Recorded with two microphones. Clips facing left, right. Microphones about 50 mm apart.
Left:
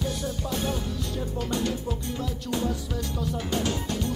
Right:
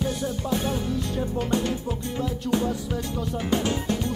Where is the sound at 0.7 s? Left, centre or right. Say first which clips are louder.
Right 4 dB; right.